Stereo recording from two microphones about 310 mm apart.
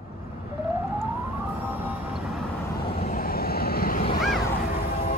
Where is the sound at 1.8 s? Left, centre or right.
Centre.